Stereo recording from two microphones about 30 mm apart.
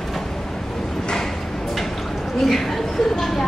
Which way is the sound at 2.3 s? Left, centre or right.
Centre.